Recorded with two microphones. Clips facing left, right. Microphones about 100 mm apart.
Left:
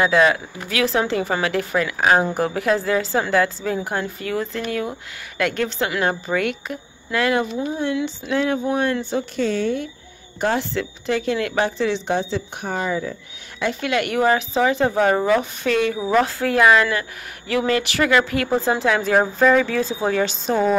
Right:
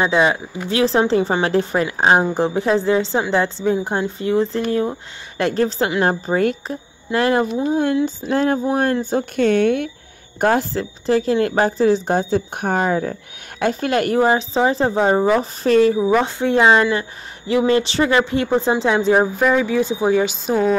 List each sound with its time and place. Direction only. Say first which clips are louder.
0.0 s a woman's voice: even; 25° right (ahead or behind)
7.7 s a woman's voice: right 5 dB; 45° right (ahead or behind)
9.1 s speech: right 5 dB; 55° right (ahead or behind)
10.4 s speech: right 4 dB; 45° right (ahead or behind)
14.2 s a woman's voice: right 2 dB; 25° right (ahead or behind)
15.6 s a woman's voice: right 6 dB; 35° right (ahead or behind)
16.0 s a woman's voice: right 2 dB; 5° right (ahead or behind)
16.3 s a woman's voice: right 2 dB; 20° right (ahead or behind)
19.3 s a woman's voice: even; 10° right (ahead or behind)